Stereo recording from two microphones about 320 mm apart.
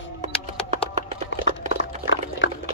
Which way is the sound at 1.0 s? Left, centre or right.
Right.